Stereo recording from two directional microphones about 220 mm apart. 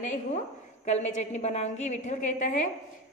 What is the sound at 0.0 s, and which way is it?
A woman's voice, 35° left (ahead or behind).